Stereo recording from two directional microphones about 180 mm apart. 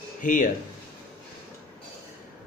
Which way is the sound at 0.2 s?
45° left (ahead or behind).